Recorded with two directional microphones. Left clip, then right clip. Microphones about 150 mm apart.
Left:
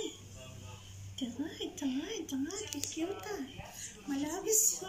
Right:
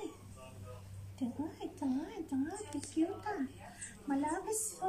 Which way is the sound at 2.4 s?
85° right.